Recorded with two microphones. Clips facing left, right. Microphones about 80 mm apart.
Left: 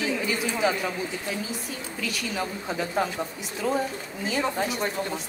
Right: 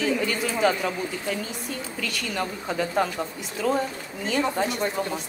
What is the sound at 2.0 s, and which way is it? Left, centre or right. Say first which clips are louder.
A man's voice: even; centre.